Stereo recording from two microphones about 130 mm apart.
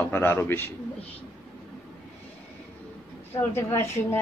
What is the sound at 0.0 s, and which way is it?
Speech, 15° left (ahead or behind).